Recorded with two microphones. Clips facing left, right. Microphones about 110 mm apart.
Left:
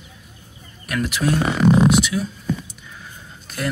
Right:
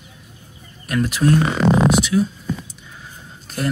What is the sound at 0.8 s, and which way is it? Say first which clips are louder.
Speech: right 3 dB; 35° right (ahead or behind).